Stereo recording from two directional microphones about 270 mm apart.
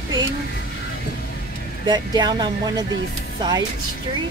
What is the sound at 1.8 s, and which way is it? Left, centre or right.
Speech, centre.